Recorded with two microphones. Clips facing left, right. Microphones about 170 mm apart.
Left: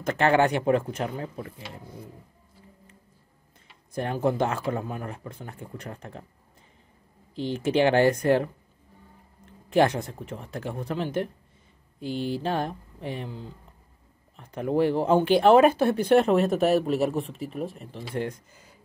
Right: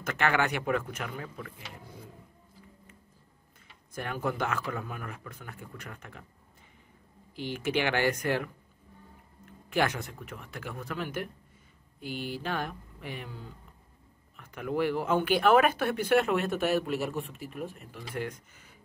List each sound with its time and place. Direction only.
0.0 s speech: 35° left (ahead or behind)
3.9 s speech: 30° left (ahead or behind)
7.4 s speech: 30° left (ahead or behind)
9.5 s speech: 30° left (ahead or behind)
12.4 s speech: 35° left (ahead or behind)
14.3 s speech: 30° left (ahead or behind)